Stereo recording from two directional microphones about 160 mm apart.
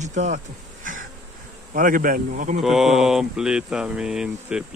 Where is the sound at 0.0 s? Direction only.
50° right (ahead or behind).